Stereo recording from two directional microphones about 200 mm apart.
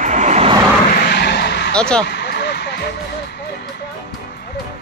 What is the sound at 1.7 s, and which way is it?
Speech, 5° left (ahead or behind).